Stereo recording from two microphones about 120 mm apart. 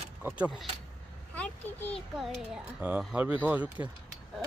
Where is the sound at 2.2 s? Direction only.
5° right (ahead or behind).